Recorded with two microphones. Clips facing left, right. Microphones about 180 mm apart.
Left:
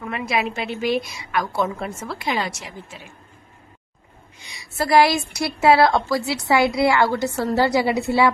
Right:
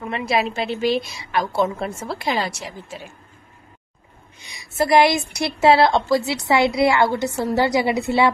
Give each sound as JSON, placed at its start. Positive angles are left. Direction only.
{"t": 0.0, "sound": "a woman's voice", "side_deg": -30}
{"t": 4.5, "sound": "a woman's voice", "side_deg": -20}